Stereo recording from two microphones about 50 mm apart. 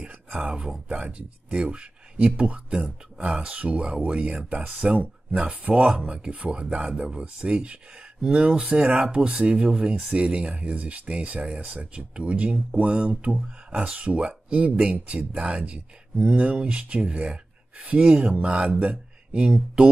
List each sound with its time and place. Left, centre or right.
1.0 s speech: right
9.1 s speech: right